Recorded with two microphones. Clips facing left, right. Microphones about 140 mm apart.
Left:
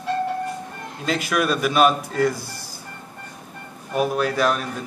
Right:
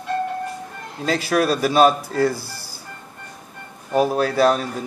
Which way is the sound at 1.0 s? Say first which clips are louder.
Right 3 dB; 35° right (ahead or behind).